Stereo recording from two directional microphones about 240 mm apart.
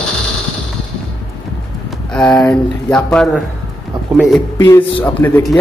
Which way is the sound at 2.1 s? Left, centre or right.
Centre.